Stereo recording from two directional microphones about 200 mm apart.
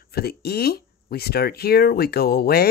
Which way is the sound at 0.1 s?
50° left (ahead or behind).